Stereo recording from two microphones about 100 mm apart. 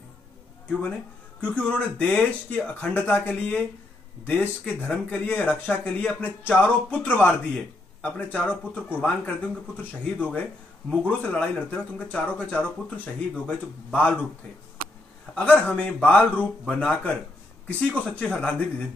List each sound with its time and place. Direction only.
1.4 s speech: 15° left (ahead or behind)
15.3 s speech: 10° left (ahead or behind)